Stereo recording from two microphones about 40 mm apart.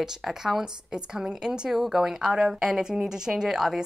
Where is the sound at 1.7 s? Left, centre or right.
Centre.